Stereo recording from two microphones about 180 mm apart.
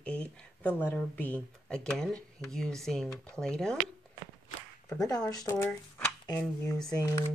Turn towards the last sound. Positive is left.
turn(degrees=20)  # may be behind; listen again after turning